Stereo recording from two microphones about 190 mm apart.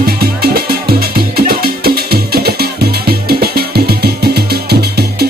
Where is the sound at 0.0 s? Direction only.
55° right (ahead or behind).